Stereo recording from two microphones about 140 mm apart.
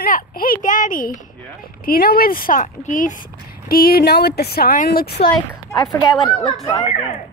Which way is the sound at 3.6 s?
90° left.